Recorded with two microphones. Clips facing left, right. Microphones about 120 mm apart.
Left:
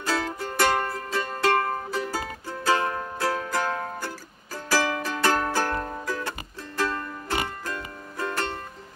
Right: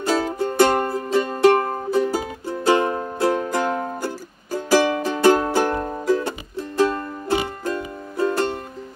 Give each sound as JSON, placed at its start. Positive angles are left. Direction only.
{"t": 0.0, "sound": "music", "side_deg": -25}